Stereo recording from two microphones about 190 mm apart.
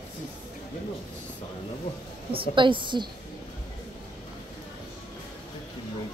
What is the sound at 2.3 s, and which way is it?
Speech, 25° right (ahead or behind).